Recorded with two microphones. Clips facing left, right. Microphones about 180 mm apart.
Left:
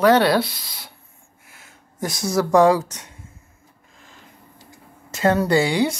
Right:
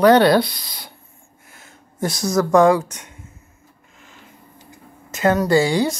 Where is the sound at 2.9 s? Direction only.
35° left (ahead or behind).